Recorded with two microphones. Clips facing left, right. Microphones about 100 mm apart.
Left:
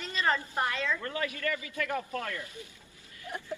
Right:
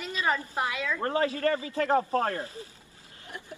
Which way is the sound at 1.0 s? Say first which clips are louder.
Right 8 dB; 35° right (ahead or behind).